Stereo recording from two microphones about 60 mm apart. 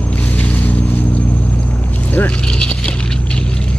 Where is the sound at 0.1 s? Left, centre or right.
Left.